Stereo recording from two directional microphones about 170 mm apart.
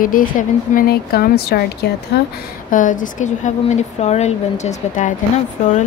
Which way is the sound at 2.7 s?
50° left (ahead or behind).